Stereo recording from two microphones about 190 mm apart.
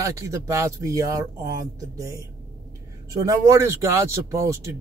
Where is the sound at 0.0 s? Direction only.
15° right (ahead or behind).